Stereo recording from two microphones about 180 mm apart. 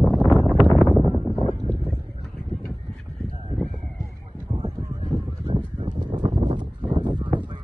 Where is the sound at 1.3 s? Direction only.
35° left (ahead or behind).